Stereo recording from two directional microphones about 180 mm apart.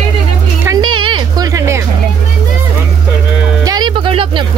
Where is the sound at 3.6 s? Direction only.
25° right (ahead or behind).